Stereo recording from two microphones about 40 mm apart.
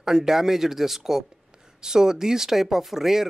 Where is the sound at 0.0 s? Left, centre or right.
Centre.